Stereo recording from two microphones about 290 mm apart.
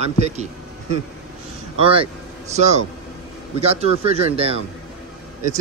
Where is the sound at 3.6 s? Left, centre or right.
Right.